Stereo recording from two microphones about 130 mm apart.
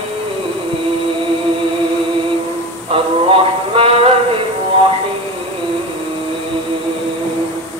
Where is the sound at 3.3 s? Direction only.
45° right (ahead or behind).